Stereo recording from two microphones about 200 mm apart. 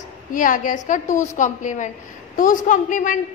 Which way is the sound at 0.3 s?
40° left (ahead or behind).